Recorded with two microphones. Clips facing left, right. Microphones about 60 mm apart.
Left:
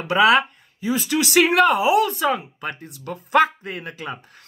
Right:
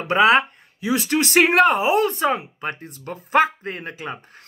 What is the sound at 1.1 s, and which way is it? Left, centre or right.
Speech, right.